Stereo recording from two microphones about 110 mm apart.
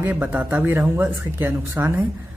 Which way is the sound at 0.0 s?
15° right (ahead or behind).